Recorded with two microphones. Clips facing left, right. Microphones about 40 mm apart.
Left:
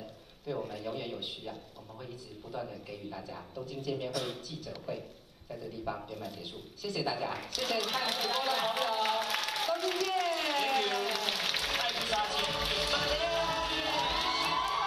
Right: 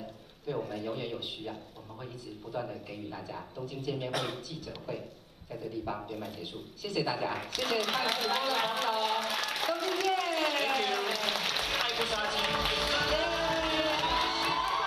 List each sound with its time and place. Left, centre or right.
0.7 s speech: right
2.5 s a man's voice: right
6.0 s speech: right
9.1 s a sound: right
12.2 s music: right